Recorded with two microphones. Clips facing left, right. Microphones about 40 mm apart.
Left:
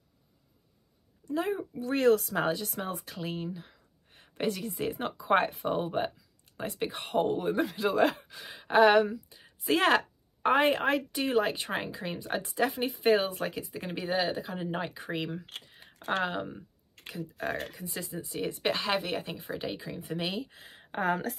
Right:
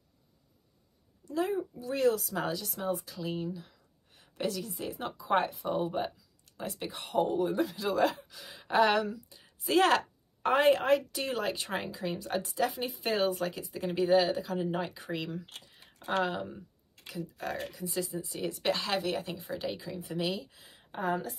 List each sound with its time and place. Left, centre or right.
1.2 s speech: left
1.7 s speech: left
2.3 s speech: left
3.3 s a woman's voice: left
13.9 s a woman's voice: centre
15.6 s computer keyboard: left
16.2 s a woman's voice: left
20.0 s a woman's voice: left